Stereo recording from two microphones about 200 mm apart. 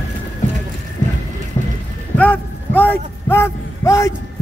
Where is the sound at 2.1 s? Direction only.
10° left (ahead or behind).